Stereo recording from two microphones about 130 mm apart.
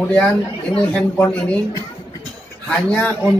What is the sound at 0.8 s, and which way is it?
Speech, 10° left (ahead or behind).